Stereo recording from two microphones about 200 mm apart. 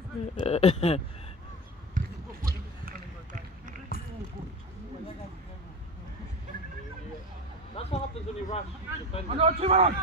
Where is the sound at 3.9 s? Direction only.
45° left (ahead or behind).